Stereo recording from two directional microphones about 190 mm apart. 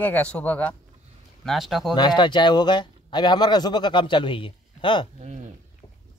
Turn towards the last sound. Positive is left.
turn(degrees=-35)  # may be behind; listen again after turning